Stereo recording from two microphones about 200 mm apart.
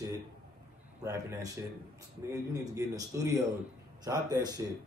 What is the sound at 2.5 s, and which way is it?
A man's voice, 15° right (ahead or behind).